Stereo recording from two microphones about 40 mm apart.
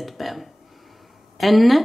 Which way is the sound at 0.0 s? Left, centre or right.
Centre.